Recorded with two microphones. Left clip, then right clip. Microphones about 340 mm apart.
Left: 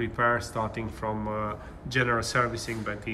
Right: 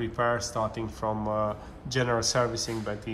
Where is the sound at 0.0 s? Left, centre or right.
Centre.